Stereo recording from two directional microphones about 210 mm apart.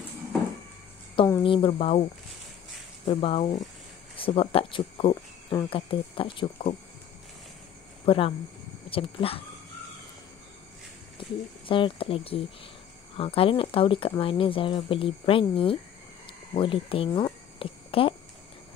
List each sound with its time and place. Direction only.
1.4 s speech: 25° left (ahead or behind)
3.1 s speech: 25° left (ahead or behind)
8.0 s speech: 25° left (ahead or behind)
11.1 s speech: 25° left (ahead or behind)